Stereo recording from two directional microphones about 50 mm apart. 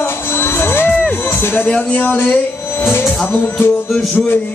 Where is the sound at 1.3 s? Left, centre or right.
Left.